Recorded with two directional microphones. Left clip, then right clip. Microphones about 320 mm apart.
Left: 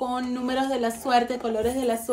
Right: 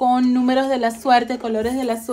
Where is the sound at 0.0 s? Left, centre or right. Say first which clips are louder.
Right 11 dB; right.